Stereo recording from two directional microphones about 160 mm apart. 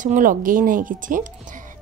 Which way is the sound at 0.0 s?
55° right (ahead or behind).